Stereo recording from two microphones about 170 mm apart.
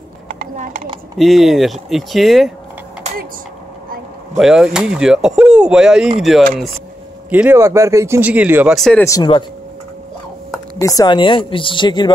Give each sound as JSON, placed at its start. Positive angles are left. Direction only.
{"t": 0.3, "sound": "a sound", "side_deg": -50}
{"t": 1.1, "sound": "speech", "side_deg": 0}
{"t": 4.4, "sound": "speech", "side_deg": -5}
{"t": 8.7, "sound": "speech", "side_deg": 0}
{"t": 9.0, "sound": "speech", "side_deg": 20}
{"t": 10.8, "sound": "speech", "side_deg": 20}